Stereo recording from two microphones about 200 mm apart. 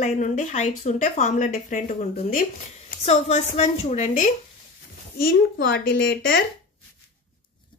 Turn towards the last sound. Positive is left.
turn(degrees=50)  # may be behind; listen again after turning